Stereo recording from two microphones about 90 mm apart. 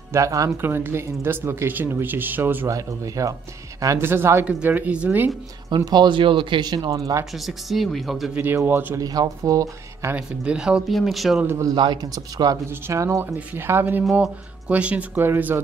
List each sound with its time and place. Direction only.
0.1 s speech: 35° right (ahead or behind)
0.6 s speech: 25° right (ahead or behind)
2.7 s speech: 40° right (ahead or behind)
4.0 s speech: 25° right (ahead or behind)
5.9 s speech: 55° right (ahead or behind)
6.9 s speech: 40° right (ahead or behind)
7.3 s speech: centre (ahead or behind)
8.6 s speech: 25° right (ahead or behind)
9.0 s speech: 45° right (ahead or behind)
10.1 s speech: 10° right (ahead or behind)
10.9 s speech: centre (ahead or behind)
11.7 s speech: 60° right (ahead or behind)
12.6 s speech: 30° right (ahead or behind)
13.2 s speech: 25° right (ahead or behind)